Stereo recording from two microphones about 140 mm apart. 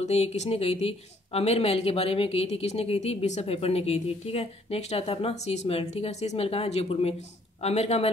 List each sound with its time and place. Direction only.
0.0 s a woman's voice: 50° left (ahead or behind)